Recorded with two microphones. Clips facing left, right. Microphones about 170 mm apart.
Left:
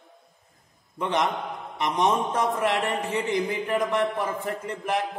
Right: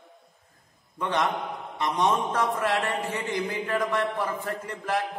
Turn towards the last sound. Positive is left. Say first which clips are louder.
# left 1 dB
turn(degrees=20)  # may be behind; listen again after turning